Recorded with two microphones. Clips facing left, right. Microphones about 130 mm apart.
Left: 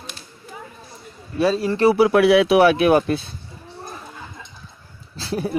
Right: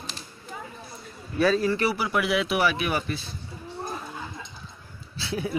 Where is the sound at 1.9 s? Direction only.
75° left (ahead or behind); by 3.2 s 55° left (ahead or behind).